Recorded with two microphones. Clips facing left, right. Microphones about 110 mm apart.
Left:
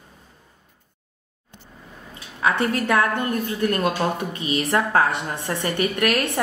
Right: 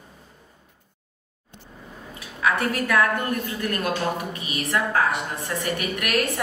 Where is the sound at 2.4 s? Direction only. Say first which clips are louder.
Left 2 dB; 30° left (ahead or behind).